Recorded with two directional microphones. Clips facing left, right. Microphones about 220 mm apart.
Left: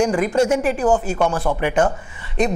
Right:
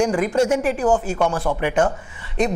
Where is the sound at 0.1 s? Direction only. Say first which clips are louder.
Left 1 dB; 20° left (ahead or behind).